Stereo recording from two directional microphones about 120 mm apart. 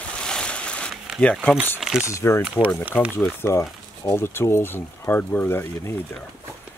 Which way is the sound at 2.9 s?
10° left (ahead or behind).